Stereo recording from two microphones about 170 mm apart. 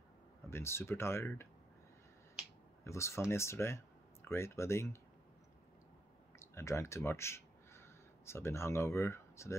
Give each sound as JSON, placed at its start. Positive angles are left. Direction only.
{"t": 0.5, "sound": "speech", "side_deg": 15}
{"t": 2.8, "sound": "speech", "side_deg": 15}
{"t": 6.4, "sound": "speech", "side_deg": 15}